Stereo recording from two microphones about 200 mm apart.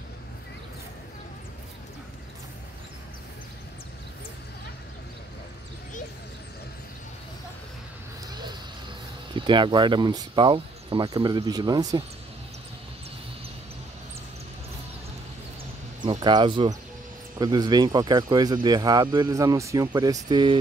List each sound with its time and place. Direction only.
8.3 s a sound: 20° right (ahead or behind)
9.3 s speech: 25° right (ahead or behind)
16.0 s speech: 20° right (ahead or behind)